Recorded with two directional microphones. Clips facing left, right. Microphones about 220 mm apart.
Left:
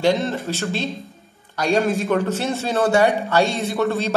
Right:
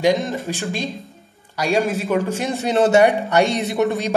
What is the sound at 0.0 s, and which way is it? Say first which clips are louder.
Speech: right 1 dB; 15° right (ahead or behind).